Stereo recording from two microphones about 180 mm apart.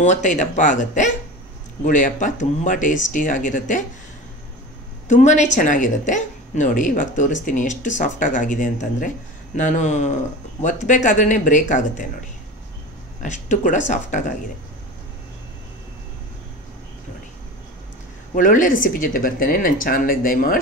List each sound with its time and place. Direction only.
0.0 s a woman's voice: 40° left (ahead or behind)
5.0 s a woman's voice: 40° left (ahead or behind)
13.2 s a woman's voice: 45° left (ahead or behind)
18.3 s a woman's voice: 45° left (ahead or behind)